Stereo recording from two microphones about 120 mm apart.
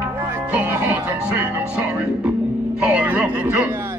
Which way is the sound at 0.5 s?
15° right (ahead or behind).